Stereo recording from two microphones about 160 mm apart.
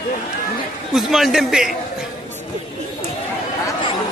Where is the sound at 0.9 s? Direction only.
Centre (ahead or behind).